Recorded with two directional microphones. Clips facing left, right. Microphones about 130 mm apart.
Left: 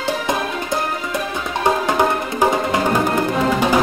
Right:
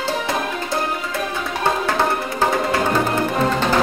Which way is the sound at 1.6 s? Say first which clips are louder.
Left 3 dB; 15° left (ahead or behind).